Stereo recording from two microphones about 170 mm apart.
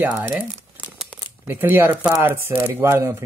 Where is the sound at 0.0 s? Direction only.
10° right (ahead or behind).